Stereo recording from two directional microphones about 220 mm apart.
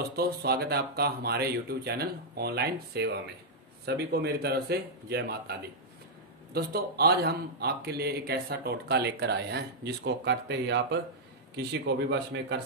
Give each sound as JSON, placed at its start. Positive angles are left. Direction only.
{"t": 0.1, "sound": "speech", "side_deg": -45}